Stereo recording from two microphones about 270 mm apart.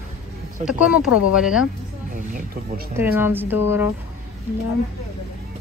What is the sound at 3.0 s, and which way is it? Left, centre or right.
Speech, centre.